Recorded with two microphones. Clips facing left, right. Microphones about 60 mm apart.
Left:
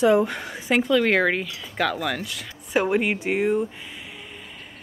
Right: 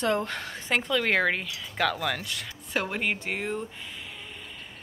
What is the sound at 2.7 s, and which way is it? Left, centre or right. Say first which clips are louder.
Speech: left 7 dB; centre.